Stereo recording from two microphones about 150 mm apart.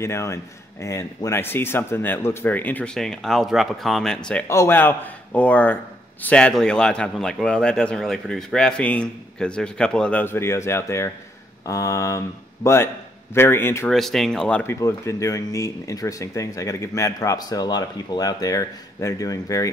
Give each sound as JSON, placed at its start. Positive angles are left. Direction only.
{"t": 0.0, "sound": "speech", "side_deg": 20}
{"t": 4.5, "sound": "a man's voice", "side_deg": 15}
{"t": 13.8, "sound": "speech", "side_deg": 0}